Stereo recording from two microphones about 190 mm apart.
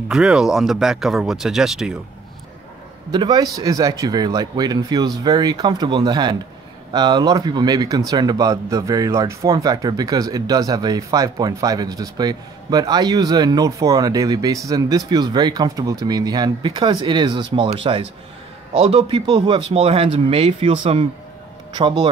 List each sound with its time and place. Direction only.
0.1 s speech: 5° right (ahead or behind)
3.1 s speech: 20° right (ahead or behind)